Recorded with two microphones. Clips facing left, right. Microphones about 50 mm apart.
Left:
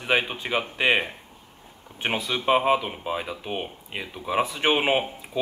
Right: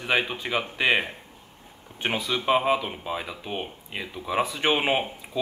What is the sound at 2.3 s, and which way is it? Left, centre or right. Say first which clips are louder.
Speech: left 2 dB; centre.